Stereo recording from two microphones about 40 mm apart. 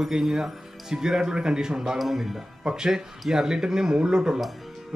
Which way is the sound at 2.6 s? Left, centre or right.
Centre.